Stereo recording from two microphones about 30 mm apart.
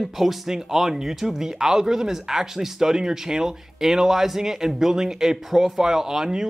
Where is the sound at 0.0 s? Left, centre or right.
Centre.